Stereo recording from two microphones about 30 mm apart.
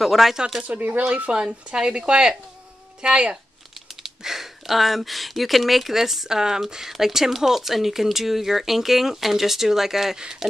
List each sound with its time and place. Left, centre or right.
0.0 s speech: centre
0.7 s speech: right
1.0 s speech: right
4.0 s a sound: centre
4.6 s speech: centre